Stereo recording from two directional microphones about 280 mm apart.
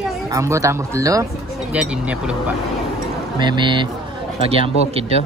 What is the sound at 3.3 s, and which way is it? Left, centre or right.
Speech, centre.